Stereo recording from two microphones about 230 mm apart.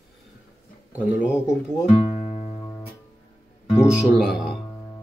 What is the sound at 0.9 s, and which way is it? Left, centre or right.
Speech, centre.